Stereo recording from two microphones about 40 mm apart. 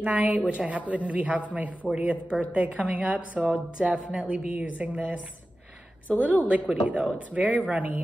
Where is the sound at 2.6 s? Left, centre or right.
Right.